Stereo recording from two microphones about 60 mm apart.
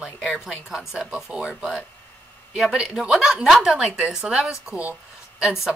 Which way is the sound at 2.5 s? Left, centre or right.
Centre.